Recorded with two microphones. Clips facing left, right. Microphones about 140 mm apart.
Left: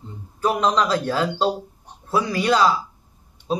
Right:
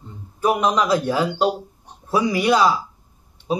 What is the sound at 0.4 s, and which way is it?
A man's voice, 15° right (ahead or behind).